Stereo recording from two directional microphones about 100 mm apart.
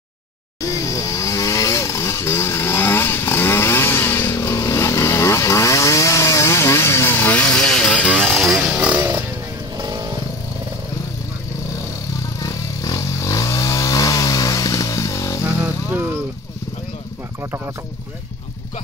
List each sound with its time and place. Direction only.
0.6 s vehicle: 30° left (ahead or behind); by 8.8 s centre (ahead or behind)
8.8 s a sound: 20° right (ahead or behind)
12.4 s vehicle: 35° left (ahead or behind)
15.4 s vehicle: 15° right (ahead or behind)